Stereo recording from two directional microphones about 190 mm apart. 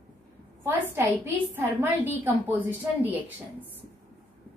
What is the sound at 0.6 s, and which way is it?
A woman's voice, 10° right (ahead or behind).